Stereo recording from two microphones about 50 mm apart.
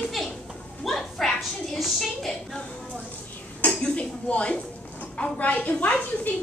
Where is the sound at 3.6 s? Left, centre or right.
Left.